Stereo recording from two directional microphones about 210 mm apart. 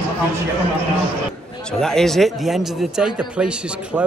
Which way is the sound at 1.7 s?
Centre (ahead or behind).